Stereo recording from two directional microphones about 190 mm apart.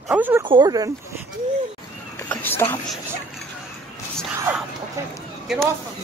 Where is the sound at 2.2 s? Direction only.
10° left (ahead or behind).